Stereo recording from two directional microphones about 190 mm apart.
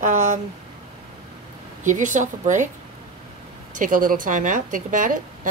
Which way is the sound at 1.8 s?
40° right (ahead or behind).